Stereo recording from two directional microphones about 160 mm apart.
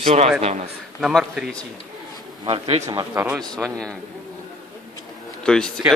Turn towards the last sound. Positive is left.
turn(degrees=5)  # may be behind; listen again after turning